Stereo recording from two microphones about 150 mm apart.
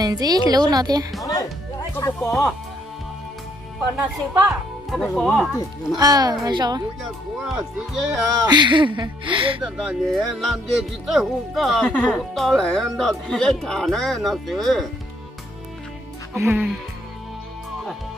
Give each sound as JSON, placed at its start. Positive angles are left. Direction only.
{"t": 0.0, "sound": "a woman's voice", "side_deg": -25}
{"t": 1.2, "sound": "music", "side_deg": 25}
{"t": 4.5, "sound": "speech", "side_deg": 0}
{"t": 5.9, "sound": "a woman's voice", "side_deg": -25}
{"t": 7.4, "sound": "speech", "side_deg": 0}
{"t": 8.5, "sound": "speech", "side_deg": -30}
{"t": 9.6, "sound": "speech", "side_deg": -5}
{"t": 16.3, "sound": "speech", "side_deg": -15}